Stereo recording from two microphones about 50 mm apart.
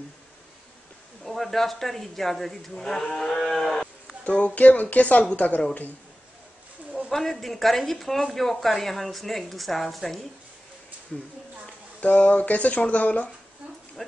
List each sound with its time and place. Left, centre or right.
1.2 s a woman's voice: centre
4.2 s speech: left
7.1 s a woman's voice: centre
12.1 s speech: left
14.0 s a sound: centre